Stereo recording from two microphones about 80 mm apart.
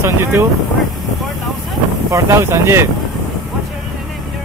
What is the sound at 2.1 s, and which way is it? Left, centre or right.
Speech, right.